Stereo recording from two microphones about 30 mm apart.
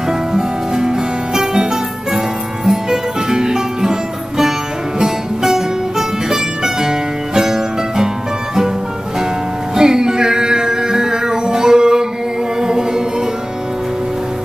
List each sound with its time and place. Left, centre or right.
0.3 s music: centre
9.8 s music: right